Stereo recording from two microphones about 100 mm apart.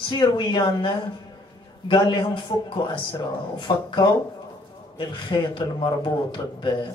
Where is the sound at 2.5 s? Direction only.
45° left (ahead or behind).